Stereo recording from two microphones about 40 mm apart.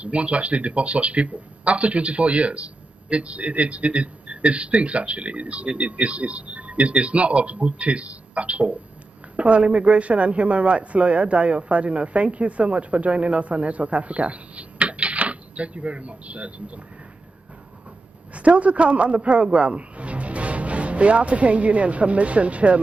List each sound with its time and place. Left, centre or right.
0.0 s speech: right
18.3 s a man's voice: right